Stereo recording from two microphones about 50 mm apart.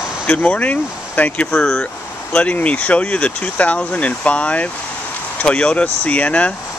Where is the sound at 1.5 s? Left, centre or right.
Centre.